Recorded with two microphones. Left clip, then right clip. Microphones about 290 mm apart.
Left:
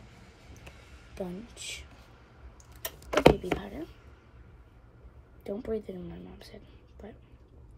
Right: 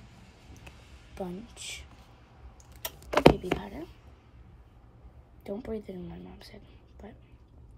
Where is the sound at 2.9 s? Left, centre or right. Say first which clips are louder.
Even; centre.